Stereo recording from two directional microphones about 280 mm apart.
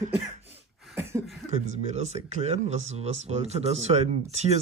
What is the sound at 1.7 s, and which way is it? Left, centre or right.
Speech, right.